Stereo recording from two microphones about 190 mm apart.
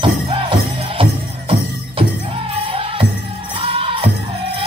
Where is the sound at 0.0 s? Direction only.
30° right (ahead or behind).